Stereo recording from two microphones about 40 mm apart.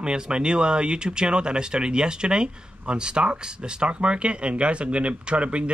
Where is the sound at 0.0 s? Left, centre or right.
Right.